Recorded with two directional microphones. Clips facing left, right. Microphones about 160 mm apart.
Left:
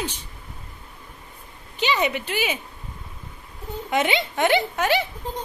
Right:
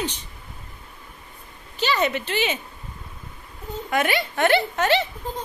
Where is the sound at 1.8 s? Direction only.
15° left (ahead or behind).